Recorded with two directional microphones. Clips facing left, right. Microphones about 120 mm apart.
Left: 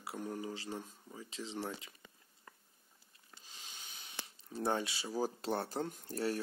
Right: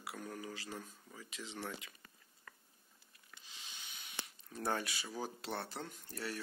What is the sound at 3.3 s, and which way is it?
Speech, 45° left (ahead or behind).